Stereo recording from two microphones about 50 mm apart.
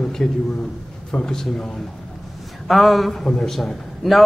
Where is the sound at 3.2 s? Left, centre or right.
Centre.